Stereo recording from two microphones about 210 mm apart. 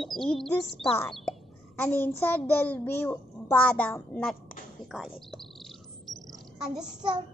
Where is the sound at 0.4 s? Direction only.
Centre (ahead or behind).